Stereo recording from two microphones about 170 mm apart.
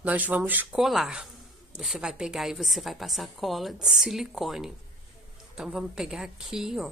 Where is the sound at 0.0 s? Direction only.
10° right (ahead or behind).